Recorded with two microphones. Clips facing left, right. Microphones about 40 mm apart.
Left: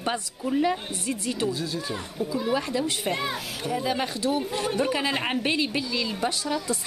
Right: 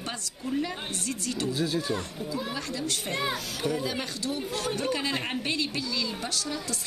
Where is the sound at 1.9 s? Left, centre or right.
Centre.